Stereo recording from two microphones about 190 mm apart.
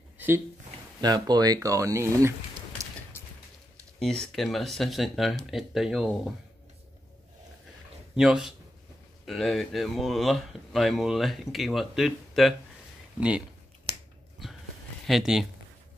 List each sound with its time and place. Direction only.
1.0 s speech: 20° right (ahead or behind)
4.0 s speech: centre (ahead or behind)
8.2 s speech: 5° right (ahead or behind)
13.9 s finger snapping: 30° right (ahead or behind)
14.4 s a sound: centre (ahead or behind)
15.0 s speech: centre (ahead or behind)